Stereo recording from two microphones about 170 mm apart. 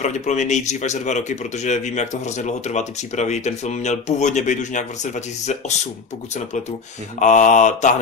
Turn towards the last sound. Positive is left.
turn(degrees=45)  # may be behind; listen again after turning